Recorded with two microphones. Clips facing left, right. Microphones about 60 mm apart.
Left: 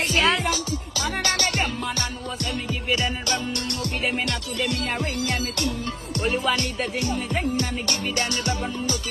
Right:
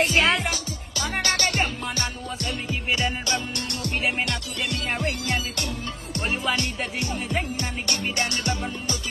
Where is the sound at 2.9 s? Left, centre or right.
Right.